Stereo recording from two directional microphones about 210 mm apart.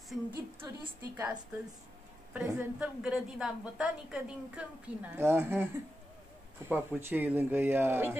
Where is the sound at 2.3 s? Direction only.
5° right (ahead or behind).